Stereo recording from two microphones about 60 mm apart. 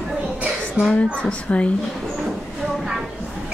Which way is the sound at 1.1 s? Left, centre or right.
Centre.